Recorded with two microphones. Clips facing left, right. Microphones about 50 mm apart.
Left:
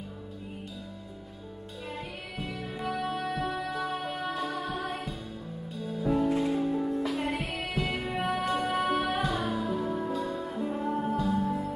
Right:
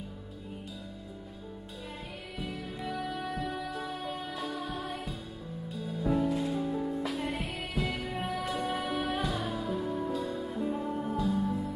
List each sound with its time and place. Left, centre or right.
2.3 s music: centre
2.9 s music: left
4.6 s music: centre